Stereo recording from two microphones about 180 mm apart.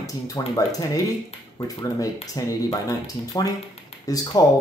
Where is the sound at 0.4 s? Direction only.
20° left (ahead or behind).